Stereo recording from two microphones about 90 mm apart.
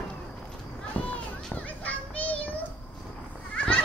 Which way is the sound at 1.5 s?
15° left (ahead or behind).